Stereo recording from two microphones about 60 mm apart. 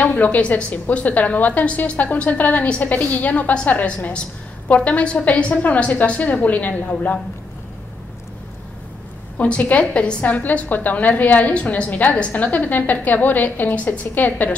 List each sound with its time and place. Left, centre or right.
0.0 s a woman's voice: left
9.4 s a woman's voice: left